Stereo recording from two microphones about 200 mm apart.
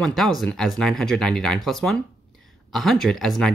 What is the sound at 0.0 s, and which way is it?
Speech, centre (ahead or behind).